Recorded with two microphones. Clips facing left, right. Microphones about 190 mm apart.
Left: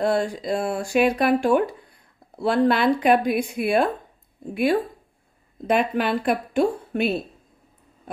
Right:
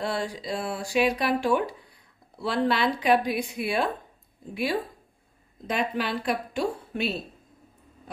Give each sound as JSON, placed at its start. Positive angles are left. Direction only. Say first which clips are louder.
{"t": 0.0, "sound": "speech", "louder": "left 7 dB", "side_deg": 50}
{"t": 5.7, "sound": "speech", "louder": "left 7 dB", "side_deg": 55}